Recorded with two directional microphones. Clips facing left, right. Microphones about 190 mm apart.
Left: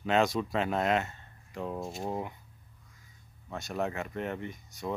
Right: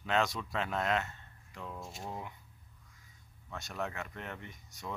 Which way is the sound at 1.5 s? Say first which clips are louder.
Left 9 dB; 35° left (ahead or behind).